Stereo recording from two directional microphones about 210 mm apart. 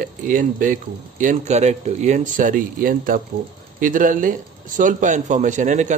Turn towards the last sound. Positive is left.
turn(degrees=-35)  # may be behind; listen again after turning